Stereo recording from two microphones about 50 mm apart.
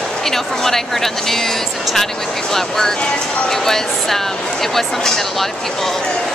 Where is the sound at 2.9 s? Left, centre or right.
Centre.